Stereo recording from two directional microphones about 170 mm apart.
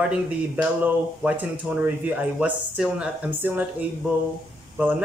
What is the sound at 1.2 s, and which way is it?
Speech, 10° right (ahead or behind).